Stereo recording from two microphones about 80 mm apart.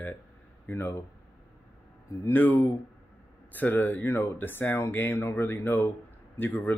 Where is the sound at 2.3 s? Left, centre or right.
Left.